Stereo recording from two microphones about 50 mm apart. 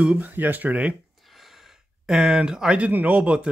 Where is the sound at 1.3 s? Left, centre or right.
Centre.